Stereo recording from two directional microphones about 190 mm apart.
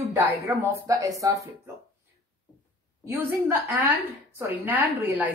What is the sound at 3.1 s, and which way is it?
A woman's voice, 10° right (ahead or behind).